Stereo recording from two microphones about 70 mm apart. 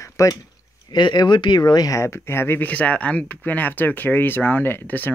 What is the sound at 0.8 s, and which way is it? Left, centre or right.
Speech, left.